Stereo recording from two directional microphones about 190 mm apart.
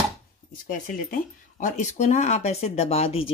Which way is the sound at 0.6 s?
45° left (ahead or behind).